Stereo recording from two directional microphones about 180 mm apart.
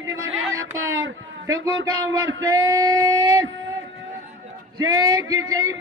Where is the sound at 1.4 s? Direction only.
20° right (ahead or behind).